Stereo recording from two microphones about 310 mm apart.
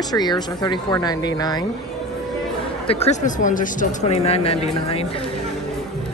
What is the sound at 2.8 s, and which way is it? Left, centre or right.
Speech, centre.